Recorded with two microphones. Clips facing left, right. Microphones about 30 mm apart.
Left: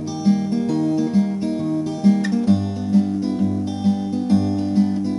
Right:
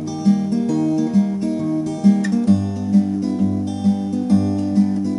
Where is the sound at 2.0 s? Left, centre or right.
Left.